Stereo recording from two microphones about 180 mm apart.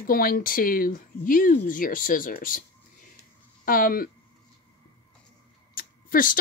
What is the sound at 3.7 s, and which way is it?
Speech, 50° left (ahead or behind).